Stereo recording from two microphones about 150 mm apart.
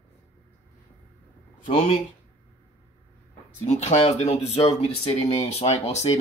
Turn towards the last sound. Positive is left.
turn(degrees=45)  # may be behind; listen again after turning